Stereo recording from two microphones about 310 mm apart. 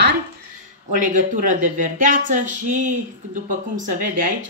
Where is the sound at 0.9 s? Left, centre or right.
Right.